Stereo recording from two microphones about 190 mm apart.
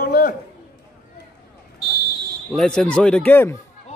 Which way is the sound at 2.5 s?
5° left (ahead or behind).